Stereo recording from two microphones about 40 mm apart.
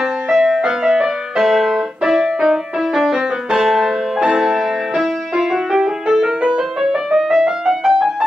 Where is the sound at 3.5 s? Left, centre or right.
Centre.